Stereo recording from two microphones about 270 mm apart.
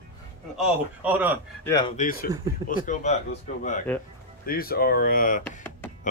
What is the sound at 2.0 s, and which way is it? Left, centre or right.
Speech, left.